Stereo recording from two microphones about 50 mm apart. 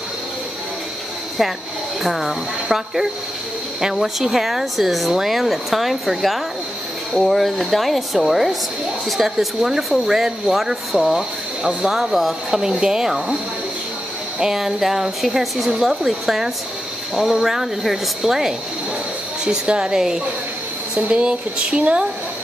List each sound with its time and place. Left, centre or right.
2.0 s speech: centre
14.4 s speech: centre; by 22.0 s right